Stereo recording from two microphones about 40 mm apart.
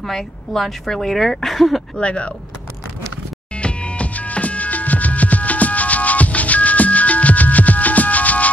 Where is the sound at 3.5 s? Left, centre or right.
Left.